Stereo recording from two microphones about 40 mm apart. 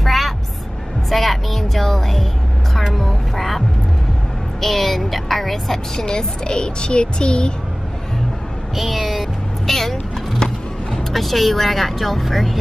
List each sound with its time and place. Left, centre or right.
0.0 s vehicle: centre
1.1 s speech: centre
5.9 s speech: centre
8.7 s speech: centre
9.7 s music: centre
11.1 s speech: centre